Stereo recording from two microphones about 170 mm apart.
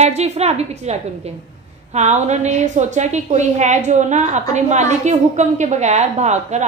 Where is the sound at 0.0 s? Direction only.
40° right (ahead or behind).